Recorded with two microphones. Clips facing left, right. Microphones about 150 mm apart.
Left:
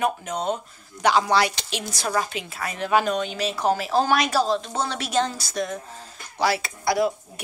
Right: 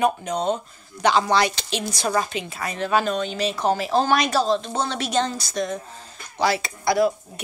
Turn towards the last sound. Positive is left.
turn(degrees=10)  # may be behind; listen again after turning